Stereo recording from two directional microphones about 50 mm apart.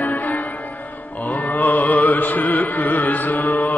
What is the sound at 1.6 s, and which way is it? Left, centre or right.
Music, left.